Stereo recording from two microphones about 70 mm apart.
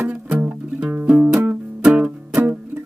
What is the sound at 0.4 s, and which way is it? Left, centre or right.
Music, right.